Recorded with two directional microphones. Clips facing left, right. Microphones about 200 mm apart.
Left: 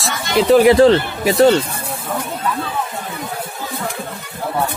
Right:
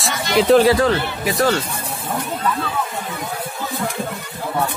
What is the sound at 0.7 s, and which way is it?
Speech, 25° left (ahead or behind).